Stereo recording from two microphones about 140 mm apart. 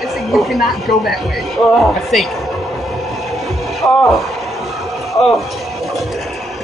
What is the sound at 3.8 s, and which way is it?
Speech, 20° left (ahead or behind).